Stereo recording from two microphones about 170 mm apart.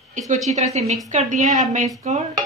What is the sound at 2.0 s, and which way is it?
Dishes, 40° right (ahead or behind).